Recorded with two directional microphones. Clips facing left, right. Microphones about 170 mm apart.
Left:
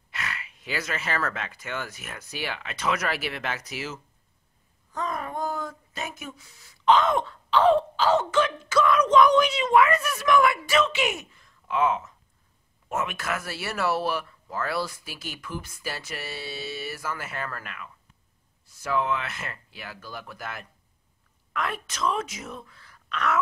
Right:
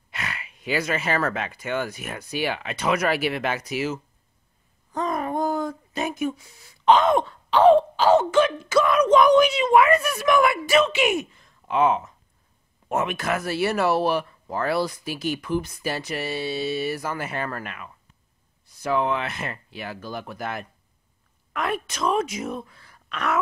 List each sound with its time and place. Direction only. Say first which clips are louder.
0.1 s speech: right 2 dB; 20° right (ahead or behind)
4.9 s a sound: right 6 dB; 20° right (ahead or behind)
6.9 s speech: right 3 dB; 15° right (ahead or behind)
13.4 s speech: right 7 dB; 20° right (ahead or behind)